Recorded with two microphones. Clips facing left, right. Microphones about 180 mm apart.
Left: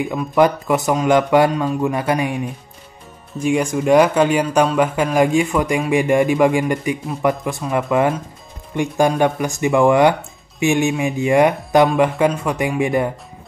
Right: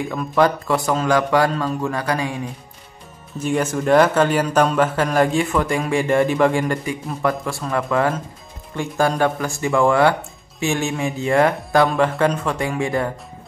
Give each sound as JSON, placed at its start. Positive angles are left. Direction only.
{"t": 0.3, "sound": "speech", "side_deg": 20}
{"t": 3.4, "sound": "speech", "side_deg": 10}